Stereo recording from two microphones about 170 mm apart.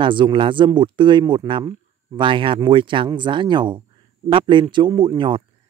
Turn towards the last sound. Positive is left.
turn(degrees=-30)  # may be behind; listen again after turning